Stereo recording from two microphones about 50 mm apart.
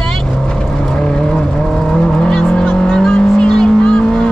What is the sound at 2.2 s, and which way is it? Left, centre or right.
Vehicle, centre.